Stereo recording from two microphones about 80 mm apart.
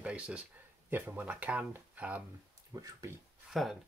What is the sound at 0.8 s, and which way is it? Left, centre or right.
Speech, right.